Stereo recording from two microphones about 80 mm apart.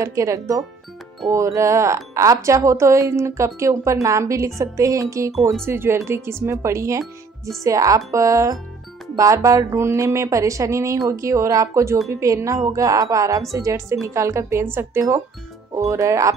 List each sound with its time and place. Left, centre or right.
0.0 s a woman's voice: right